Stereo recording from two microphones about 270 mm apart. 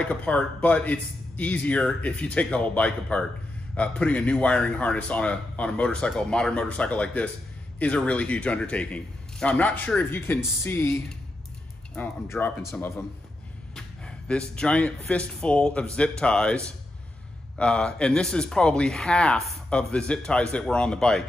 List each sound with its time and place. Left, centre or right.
0.0 s speech: centre